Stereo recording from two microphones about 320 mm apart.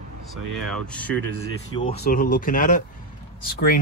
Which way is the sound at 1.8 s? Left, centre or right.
Left.